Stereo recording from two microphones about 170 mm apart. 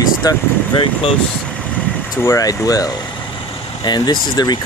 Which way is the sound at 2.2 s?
20° left (ahead or behind).